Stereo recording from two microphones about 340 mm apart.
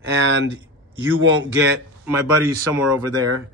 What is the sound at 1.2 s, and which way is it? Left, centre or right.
Speech, right.